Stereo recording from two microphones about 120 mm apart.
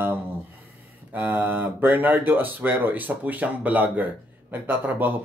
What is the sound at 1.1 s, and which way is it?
Speech, 15° right (ahead or behind).